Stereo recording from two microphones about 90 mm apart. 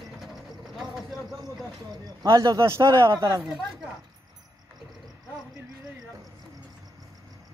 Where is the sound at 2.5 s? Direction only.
35° right (ahead or behind).